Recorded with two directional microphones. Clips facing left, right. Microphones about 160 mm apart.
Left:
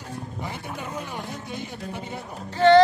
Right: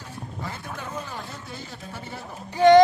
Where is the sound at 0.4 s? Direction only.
15° left (ahead or behind).